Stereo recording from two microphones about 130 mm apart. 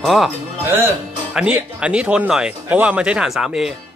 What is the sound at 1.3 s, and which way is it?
Speech, 5° right (ahead or behind).